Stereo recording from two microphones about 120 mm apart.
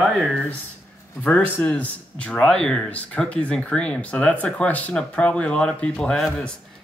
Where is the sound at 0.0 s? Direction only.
5° right (ahead or behind).